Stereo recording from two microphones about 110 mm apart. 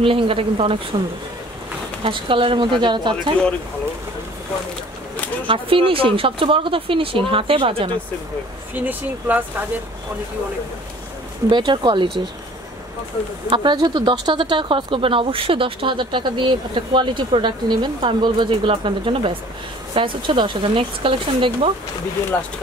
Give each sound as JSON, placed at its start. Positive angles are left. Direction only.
{"t": 0.0, "sound": "speech", "side_deg": -55}
{"t": 2.0, "sound": "speech", "side_deg": -50}
{"t": 5.5, "sound": "speech", "side_deg": -55}
{"t": 8.7, "sound": "speech", "side_deg": -15}
{"t": 11.5, "sound": "speech", "side_deg": -45}
{"t": 13.5, "sound": "speech", "side_deg": -45}